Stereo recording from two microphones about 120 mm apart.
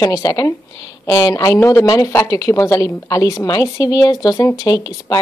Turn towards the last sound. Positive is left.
turn(degrees=30)  # may be behind; listen again after turning